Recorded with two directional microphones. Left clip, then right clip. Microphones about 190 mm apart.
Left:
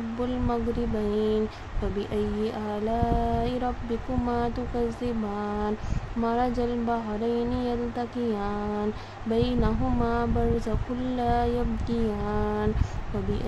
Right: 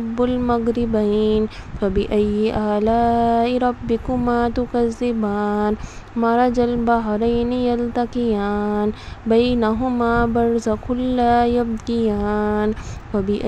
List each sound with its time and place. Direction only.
0.2 s speech: 35° right (ahead or behind)